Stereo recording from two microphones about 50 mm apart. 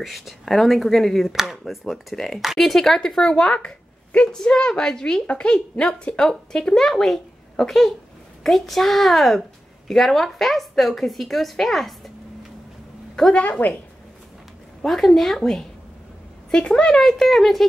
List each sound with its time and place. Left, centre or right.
0.0 s a woman's voice: centre
1.3 s a woman's voice: centre
13.1 s a woman's voice: centre
13.4 s speech: left
14.8 s a woman's voice: centre